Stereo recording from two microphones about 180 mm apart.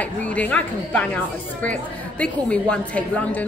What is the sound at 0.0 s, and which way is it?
A woman's voice, 5° left (ahead or behind).